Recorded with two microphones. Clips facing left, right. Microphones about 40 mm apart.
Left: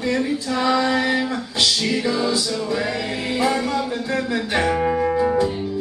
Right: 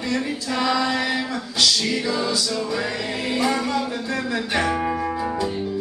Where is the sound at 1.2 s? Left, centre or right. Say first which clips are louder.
Left 1 dB; left.